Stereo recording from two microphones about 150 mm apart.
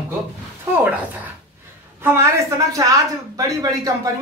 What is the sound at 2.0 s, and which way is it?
A woman's voice, 20° right (ahead or behind).